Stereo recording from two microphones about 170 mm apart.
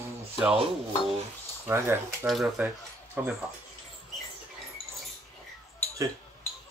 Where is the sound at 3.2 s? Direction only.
10° right (ahead or behind).